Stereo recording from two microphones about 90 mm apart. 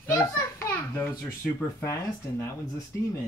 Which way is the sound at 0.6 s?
25° left (ahead or behind).